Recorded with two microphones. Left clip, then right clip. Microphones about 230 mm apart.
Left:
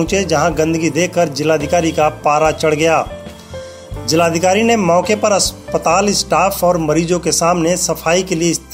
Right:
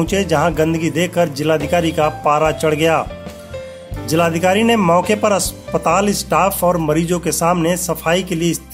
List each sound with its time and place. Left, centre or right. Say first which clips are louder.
0.0 s speech: left 2 dB; right
4.1 s speech: left 2 dB; right